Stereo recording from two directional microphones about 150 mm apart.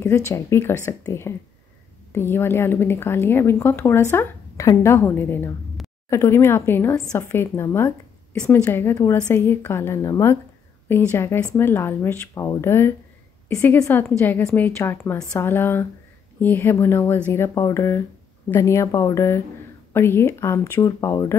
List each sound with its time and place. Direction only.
0.0 s a woman's voice: 20° left (ahead or behind)